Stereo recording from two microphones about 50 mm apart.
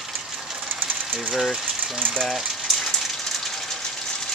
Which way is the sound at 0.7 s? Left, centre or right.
Right.